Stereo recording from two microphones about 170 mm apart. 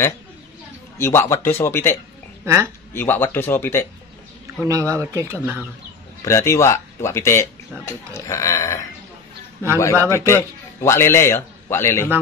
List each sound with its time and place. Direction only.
0.9 s speech: 15° left (ahead or behind)
2.4 s speech: 15° right (ahead or behind)
2.9 s speech: 10° left (ahead or behind)
4.6 s speech: 20° right (ahead or behind)
6.2 s speech: 15° left (ahead or behind)
10.0 s a man's voice: 15° left (ahead or behind)